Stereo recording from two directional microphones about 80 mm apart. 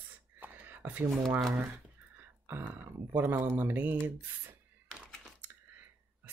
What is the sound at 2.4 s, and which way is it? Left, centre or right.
Speech, right.